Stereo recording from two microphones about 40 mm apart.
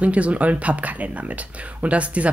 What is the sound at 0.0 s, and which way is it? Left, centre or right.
Speech, right.